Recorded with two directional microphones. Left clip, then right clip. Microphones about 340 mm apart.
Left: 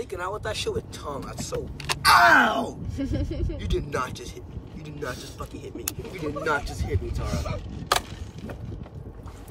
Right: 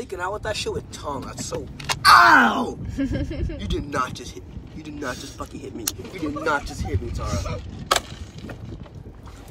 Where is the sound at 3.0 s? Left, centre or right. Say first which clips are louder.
Right 3 dB; right.